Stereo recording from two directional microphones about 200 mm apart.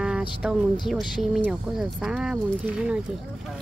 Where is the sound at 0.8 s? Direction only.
Centre (ahead or behind).